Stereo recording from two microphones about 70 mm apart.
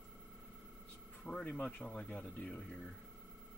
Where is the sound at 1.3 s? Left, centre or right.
Centre.